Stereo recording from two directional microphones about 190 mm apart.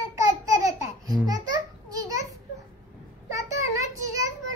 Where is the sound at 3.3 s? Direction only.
15° right (ahead or behind).